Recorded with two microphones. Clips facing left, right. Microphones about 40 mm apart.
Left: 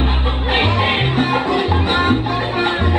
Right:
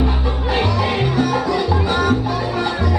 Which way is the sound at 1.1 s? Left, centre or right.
Left.